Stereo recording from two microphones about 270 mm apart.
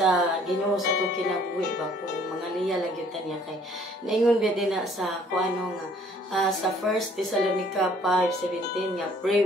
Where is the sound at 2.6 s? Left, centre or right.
Centre.